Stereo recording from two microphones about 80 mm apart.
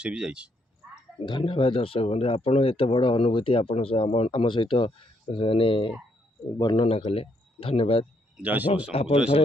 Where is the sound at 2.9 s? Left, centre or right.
Left.